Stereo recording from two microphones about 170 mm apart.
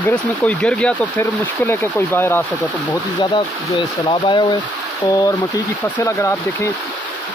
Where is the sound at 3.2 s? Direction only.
30° left (ahead or behind).